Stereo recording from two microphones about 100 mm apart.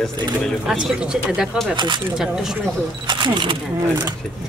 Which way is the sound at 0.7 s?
10° right (ahead or behind).